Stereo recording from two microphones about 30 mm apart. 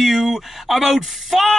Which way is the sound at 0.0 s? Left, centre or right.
Centre.